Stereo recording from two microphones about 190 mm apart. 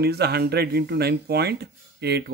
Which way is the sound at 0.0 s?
55° right (ahead or behind).